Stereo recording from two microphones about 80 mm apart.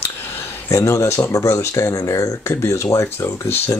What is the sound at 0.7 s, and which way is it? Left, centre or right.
Speech, left.